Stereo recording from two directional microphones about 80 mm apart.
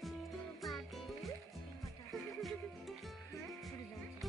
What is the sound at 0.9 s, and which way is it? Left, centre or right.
Music, centre.